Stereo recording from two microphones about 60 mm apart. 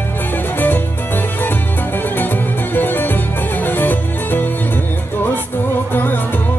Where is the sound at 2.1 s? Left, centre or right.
Left.